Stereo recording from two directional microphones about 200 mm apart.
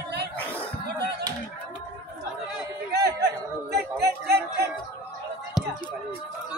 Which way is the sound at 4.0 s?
55° right (ahead or behind).